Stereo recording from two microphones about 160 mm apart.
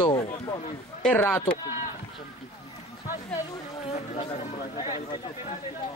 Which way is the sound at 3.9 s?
40° left (ahead or behind).